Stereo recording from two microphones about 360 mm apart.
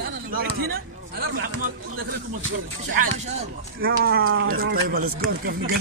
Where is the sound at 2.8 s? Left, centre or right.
Right.